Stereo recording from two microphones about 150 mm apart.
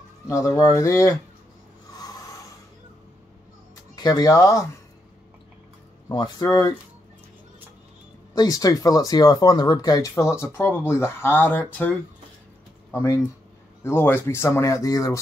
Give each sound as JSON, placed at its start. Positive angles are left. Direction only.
{"t": 0.3, "sound": "speech", "side_deg": 20}
{"t": 3.9, "sound": "speech", "side_deg": 25}
{"t": 6.0, "sound": "speech", "side_deg": 25}
{"t": 8.4, "sound": "speech", "side_deg": 25}
{"t": 12.9, "sound": "speech", "side_deg": 20}